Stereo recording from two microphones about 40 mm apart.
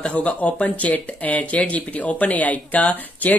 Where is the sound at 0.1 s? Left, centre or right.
Left.